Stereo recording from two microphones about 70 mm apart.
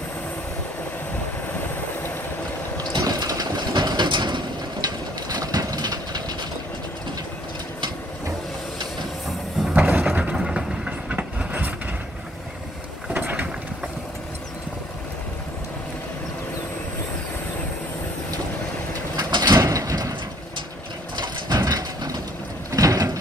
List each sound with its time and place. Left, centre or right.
2.8 s sewing machine: right
4.8 s train: right
9.8 s ratchet: right
10.0 s wood: centre
10.3 s vehicle: centre
10.9 s train: right
13.1 s vehicle: right
19.1 s mechanisms: right
19.6 s sliding door: right
21.5 s vehicle: right
22.7 s a sound: right